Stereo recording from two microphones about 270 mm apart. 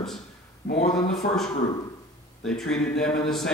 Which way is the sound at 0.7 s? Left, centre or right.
Left.